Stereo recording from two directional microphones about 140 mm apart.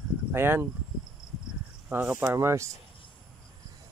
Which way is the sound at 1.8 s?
10° right (ahead or behind).